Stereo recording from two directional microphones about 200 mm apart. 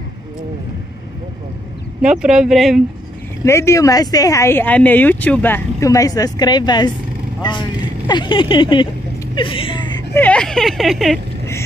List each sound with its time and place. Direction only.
2.0 s speech: 5° right (ahead or behind)
3.4 s speech: 15° left (ahead or behind)
9.3 s a sound: 25° left (ahead or behind)
10.1 s speech: 5° left (ahead or behind)